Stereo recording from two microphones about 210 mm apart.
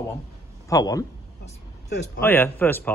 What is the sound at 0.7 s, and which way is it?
Speech, 15° left (ahead or behind).